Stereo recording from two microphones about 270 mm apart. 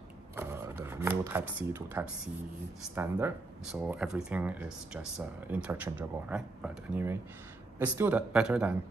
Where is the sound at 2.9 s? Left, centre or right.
Centre.